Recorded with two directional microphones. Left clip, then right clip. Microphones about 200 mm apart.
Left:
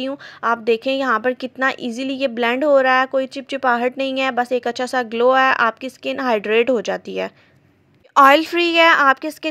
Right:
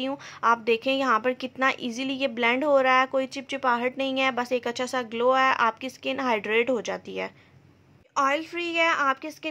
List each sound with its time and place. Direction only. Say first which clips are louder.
0.0 s a woman's voice: left 3 dB; 25° left (ahead or behind)
8.1 s a woman's voice: left 13 dB; 45° left (ahead or behind)